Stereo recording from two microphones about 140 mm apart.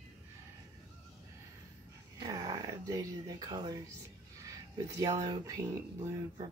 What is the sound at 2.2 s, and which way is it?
Speech, 25° right (ahead or behind).